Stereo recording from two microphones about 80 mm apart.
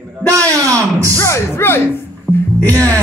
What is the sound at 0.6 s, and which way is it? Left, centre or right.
Music, right.